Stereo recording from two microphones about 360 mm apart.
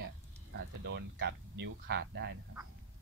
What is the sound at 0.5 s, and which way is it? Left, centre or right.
Speech, right.